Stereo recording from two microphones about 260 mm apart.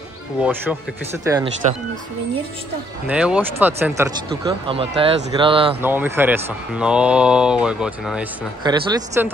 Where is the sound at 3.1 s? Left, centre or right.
Centre.